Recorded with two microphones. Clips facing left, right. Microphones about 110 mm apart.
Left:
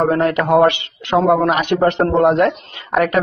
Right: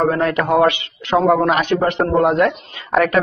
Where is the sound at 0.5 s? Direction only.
25° left (ahead or behind).